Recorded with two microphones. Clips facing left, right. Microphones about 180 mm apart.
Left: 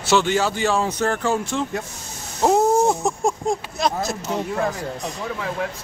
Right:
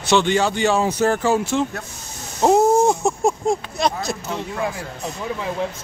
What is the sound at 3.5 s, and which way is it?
Speech, centre (ahead or behind).